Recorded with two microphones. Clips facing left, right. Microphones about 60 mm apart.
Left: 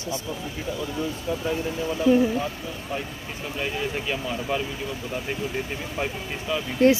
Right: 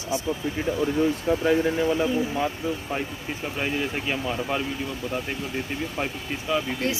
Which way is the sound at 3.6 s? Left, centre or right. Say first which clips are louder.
Even; centre.